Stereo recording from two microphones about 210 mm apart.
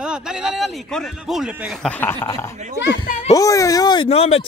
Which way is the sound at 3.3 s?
15° left (ahead or behind).